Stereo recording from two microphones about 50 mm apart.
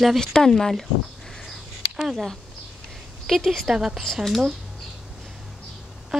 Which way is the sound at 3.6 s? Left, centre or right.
Centre.